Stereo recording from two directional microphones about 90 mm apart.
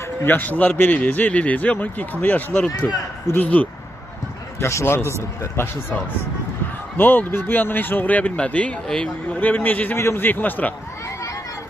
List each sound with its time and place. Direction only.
0.2 s a man's voice: 20° left (ahead or behind)
4.6 s speech: 30° left (ahead or behind)